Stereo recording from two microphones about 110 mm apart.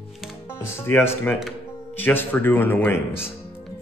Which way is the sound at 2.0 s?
20° left (ahead or behind).